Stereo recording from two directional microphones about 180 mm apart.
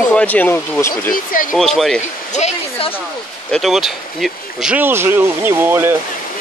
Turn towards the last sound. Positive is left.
turn(degrees=-10)  # may be behind; listen again after turning